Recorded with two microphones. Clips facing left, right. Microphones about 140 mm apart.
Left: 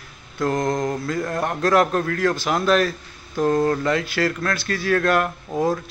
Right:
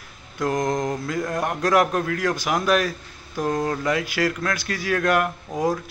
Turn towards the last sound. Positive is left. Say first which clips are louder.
# left 2 dB
turn(degrees=-15)  # may be behind; listen again after turning